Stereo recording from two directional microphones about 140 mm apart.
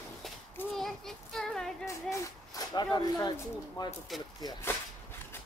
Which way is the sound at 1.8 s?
25° left (ahead or behind).